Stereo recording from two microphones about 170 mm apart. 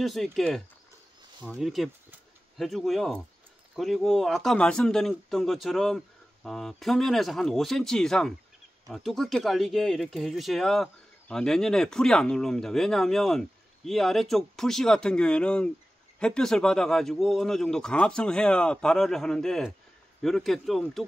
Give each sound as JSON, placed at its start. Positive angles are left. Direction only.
{"t": 0.0, "sound": "speech", "side_deg": 0}